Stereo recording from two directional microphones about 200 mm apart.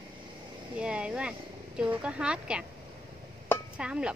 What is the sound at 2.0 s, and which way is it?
Speech, 5° right (ahead or behind).